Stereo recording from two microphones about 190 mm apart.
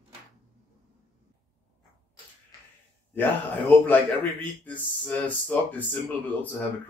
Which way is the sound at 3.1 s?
10° left (ahead or behind).